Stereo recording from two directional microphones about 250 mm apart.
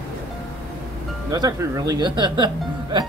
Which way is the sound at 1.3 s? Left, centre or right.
Centre.